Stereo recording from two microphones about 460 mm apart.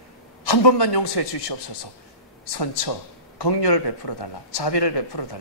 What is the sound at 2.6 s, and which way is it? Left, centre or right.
Speech, left.